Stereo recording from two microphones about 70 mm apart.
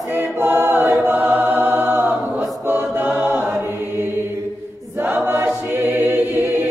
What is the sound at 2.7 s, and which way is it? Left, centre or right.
A capella, right.